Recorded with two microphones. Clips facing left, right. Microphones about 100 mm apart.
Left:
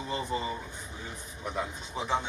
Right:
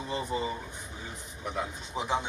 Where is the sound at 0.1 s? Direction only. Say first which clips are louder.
Right 1 dB; 10° right (ahead or behind).